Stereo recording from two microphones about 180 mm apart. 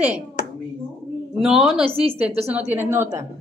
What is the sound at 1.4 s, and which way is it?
Speech, 5° right (ahead or behind).